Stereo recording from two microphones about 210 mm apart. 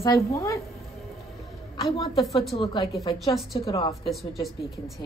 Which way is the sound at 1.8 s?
30° left (ahead or behind).